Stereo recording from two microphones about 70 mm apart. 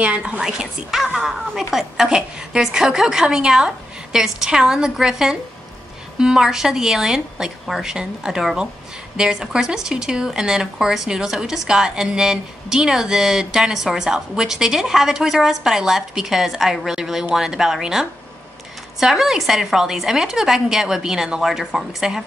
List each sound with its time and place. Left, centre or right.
0.0 s a woman's voice: centre